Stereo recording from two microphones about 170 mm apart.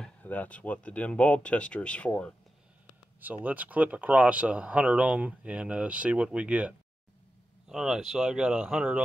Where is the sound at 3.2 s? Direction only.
10° right (ahead or behind).